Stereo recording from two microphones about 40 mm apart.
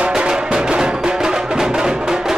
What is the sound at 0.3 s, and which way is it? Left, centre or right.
Music, centre.